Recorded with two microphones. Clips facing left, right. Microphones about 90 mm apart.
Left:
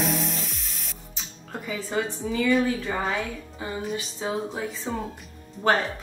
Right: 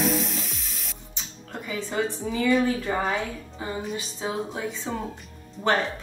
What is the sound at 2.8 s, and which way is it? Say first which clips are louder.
Speech: right 2 dB; 10° right (ahead or behind).